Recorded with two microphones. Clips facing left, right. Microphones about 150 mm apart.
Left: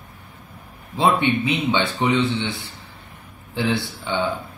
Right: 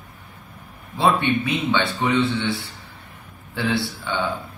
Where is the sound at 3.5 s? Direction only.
20° left (ahead or behind).